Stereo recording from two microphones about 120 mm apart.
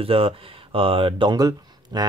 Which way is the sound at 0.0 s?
50° right (ahead or behind).